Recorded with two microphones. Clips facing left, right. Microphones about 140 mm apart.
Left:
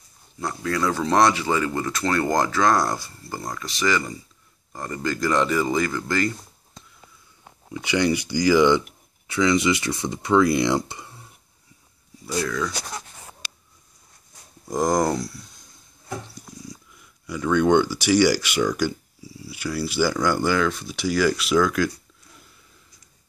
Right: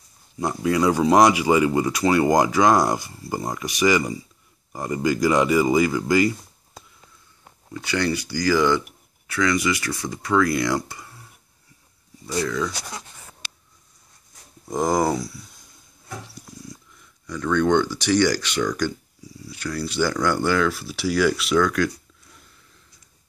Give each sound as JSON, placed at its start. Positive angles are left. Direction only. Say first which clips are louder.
{"t": 0.4, "sound": "speech", "louder": "right 4 dB", "side_deg": -20}
{"t": 7.7, "sound": "speech", "louder": "left 2 dB", "side_deg": 15}
{"t": 12.4, "sound": "speech", "louder": "right 1 dB", "side_deg": 0}
{"t": 14.7, "sound": "speech", "louder": "even", "side_deg": -5}